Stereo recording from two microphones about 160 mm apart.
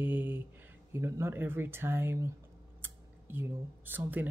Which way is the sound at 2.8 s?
10° right (ahead or behind).